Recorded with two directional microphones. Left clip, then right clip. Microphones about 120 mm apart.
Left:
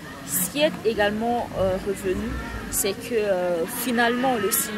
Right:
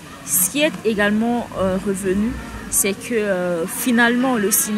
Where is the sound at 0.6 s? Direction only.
15° left (ahead or behind).